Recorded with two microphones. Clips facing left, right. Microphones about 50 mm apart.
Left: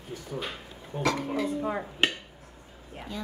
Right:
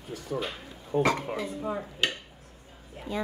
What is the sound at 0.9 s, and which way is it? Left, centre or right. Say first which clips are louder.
Speech: right 4 dB; right.